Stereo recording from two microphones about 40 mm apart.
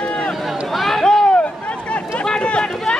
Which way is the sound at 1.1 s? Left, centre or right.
Centre.